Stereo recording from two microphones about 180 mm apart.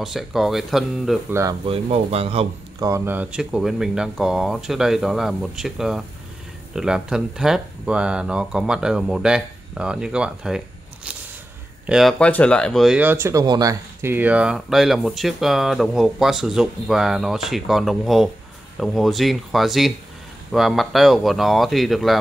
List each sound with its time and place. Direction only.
0.0 s speech: centre (ahead or behind)
1.3 s speech: 15° right (ahead or behind)
1.7 s speech: 35° right (ahead or behind)
2.8 s speech: 15° right (ahead or behind)
11.8 s speech: centre (ahead or behind)